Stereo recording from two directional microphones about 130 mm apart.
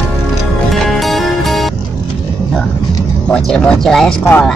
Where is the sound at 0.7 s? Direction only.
Centre (ahead or behind).